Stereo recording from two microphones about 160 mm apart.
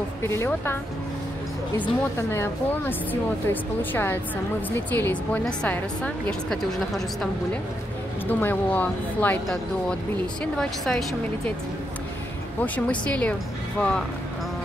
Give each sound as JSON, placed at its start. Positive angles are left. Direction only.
{"t": 0.2, "sound": "a woman's voice", "side_deg": 15}
{"t": 1.8, "sound": "a woman's voice", "side_deg": 15}
{"t": 8.3, "sound": "a woman's voice", "side_deg": 10}
{"t": 12.6, "sound": "a woman's voice", "side_deg": 10}